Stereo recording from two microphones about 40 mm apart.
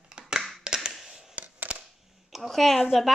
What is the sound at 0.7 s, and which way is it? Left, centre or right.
Tap, centre.